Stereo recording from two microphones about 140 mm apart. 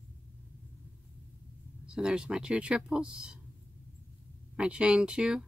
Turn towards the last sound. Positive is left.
turn(degrees=-5)  # may be behind; listen again after turning